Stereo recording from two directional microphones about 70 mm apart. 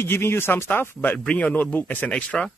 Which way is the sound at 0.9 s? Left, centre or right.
Centre.